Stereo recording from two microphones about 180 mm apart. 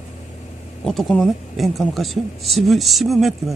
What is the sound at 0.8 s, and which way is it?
Speech, 5° left (ahead or behind).